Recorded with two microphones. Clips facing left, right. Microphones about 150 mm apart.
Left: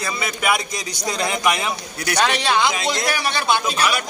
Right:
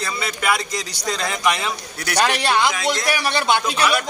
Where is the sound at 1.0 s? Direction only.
15° left (ahead or behind).